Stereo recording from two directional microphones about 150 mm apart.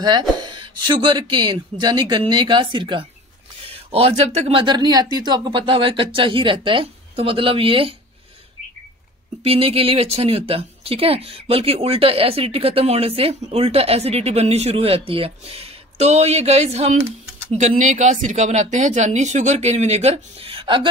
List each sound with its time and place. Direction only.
0.0 s speech: 30° right (ahead or behind)
9.4 s speech: 40° right (ahead or behind)